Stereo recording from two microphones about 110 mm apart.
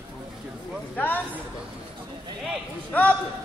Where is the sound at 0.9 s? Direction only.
15° left (ahead or behind).